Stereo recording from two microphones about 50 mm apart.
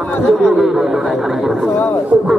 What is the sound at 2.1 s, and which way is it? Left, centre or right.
Speech, right.